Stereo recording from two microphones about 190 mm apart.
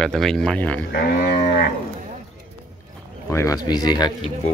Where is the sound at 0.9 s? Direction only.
55° left (ahead or behind).